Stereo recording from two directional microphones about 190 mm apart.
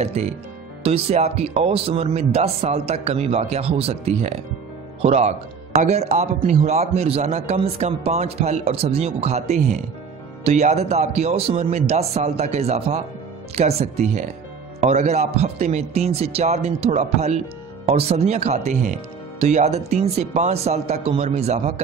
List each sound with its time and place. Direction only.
0.0 s a man's voice: 35° right (ahead or behind)